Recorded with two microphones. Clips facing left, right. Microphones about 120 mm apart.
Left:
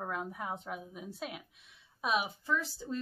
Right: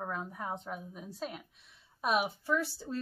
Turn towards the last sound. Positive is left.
turn(degrees=-10)  # may be behind; listen again after turning